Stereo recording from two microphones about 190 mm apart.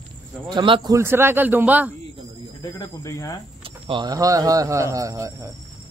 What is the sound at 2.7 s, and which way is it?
Speech, 15° left (ahead or behind).